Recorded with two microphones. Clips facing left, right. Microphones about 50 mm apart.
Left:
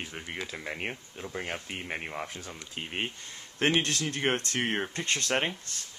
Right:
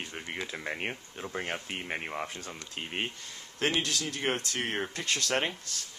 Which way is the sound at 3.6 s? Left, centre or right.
Left.